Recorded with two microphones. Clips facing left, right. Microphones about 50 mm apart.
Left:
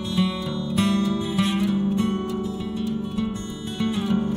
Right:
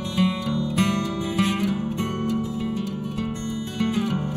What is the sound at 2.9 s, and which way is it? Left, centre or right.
Music, left.